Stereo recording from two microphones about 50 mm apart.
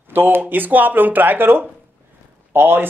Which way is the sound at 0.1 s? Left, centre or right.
Right.